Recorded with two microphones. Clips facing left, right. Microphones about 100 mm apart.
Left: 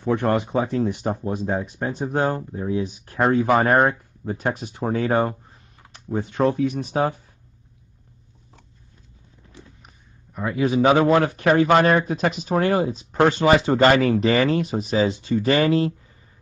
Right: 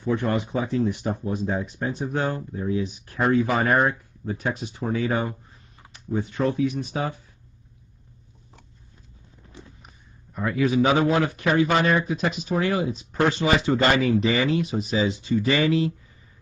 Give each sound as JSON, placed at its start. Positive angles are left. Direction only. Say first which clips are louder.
{"t": 0.0, "sound": "speech", "louder": "left 3 dB", "side_deg": 60}
{"t": 10.4, "sound": "a man's voice", "louder": "left 2 dB", "side_deg": 30}
{"t": 11.1, "sound": "speech", "louder": "left 4 dB", "side_deg": 50}